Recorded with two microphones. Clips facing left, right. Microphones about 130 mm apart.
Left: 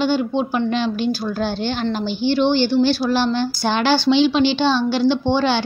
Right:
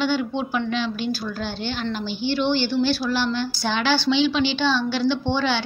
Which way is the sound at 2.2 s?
25° left (ahead or behind).